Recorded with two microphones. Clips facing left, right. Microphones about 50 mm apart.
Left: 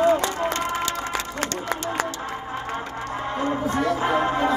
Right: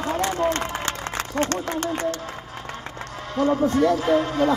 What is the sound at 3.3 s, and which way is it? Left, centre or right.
Speech, left.